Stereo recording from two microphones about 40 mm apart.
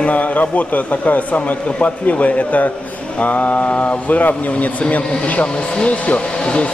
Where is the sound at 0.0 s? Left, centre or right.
Left.